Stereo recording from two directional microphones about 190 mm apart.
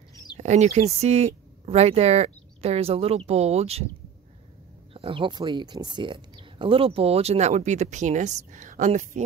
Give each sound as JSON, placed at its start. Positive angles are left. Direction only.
{"t": 0.1, "sound": "a sound", "side_deg": 20}
{"t": 0.4, "sound": "speech", "side_deg": -40}
{"t": 4.9, "sound": "speech", "side_deg": -30}